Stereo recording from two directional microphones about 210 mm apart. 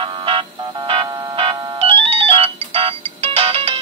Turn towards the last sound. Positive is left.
turn(degrees=-25)  # may be behind; listen again after turning